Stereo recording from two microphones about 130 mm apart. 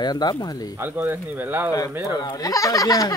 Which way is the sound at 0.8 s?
15° right (ahead or behind).